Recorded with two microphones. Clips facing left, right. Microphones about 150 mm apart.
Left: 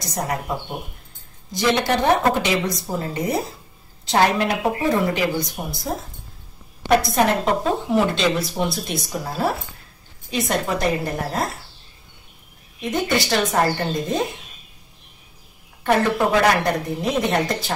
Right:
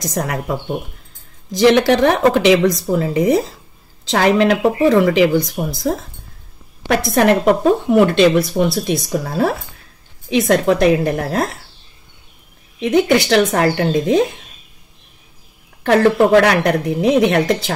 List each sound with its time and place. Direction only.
0.0 s speech: 90° right
1.5 s speech: 90° right
6.9 s a woman's voice: 75° right (ahead or behind)
10.3 s a woman's voice: 75° right (ahead or behind)
12.8 s speech: 75° right (ahead or behind)
15.8 s speech: 75° right (ahead or behind)